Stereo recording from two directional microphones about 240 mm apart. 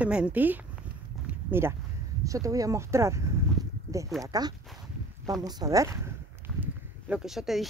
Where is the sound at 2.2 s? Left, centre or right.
Centre.